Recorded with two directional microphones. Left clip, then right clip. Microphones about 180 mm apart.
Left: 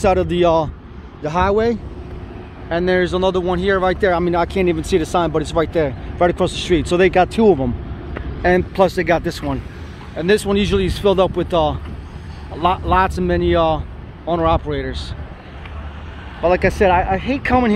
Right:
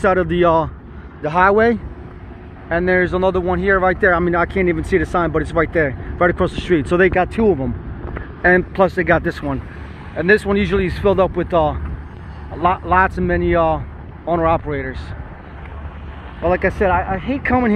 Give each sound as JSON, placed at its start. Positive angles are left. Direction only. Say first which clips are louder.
{"t": 0.0, "sound": "speech", "louder": "even", "side_deg": 15}
{"t": 1.2, "sound": "speech", "louder": "right 3 dB", "side_deg": 5}
{"t": 2.7, "sound": "speech", "louder": "right 1 dB", "side_deg": 20}
{"t": 16.4, "sound": "speech", "louder": "left 2 dB", "side_deg": 25}
{"t": 17.4, "sound": "speech", "louder": "even", "side_deg": 25}